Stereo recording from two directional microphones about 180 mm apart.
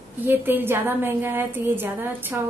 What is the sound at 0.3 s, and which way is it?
A woman's voice, 10° right (ahead or behind).